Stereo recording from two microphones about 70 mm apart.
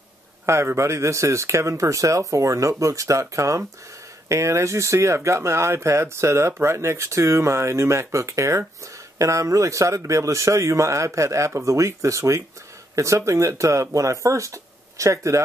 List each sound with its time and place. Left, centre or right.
0.5 s speech: right